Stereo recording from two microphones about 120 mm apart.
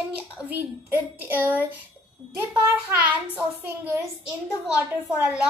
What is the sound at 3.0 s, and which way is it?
A child's voice, 15° right (ahead or behind).